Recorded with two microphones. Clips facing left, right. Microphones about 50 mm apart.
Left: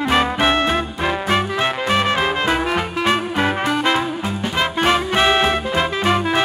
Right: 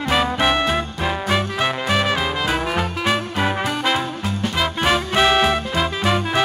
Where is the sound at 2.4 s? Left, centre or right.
Centre.